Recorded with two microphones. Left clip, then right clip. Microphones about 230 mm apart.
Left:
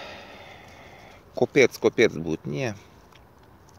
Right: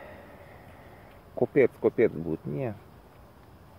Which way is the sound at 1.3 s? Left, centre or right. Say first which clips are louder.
Left 4 dB; left.